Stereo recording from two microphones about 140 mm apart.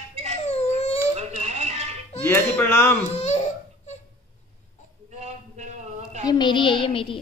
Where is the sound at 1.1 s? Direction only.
50° right (ahead or behind).